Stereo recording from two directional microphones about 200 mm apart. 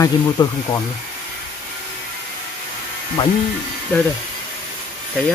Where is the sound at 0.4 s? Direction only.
20° left (ahead or behind).